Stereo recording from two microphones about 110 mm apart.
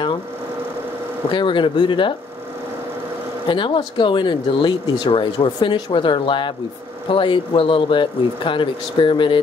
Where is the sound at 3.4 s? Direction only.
50° left (ahead or behind).